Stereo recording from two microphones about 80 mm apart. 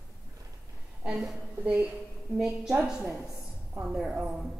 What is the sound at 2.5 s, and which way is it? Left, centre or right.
Speech, centre.